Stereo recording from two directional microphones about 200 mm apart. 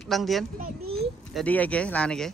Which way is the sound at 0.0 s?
Centre (ahead or behind).